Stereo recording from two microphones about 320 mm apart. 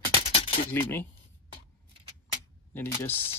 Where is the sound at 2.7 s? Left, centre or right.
Centre.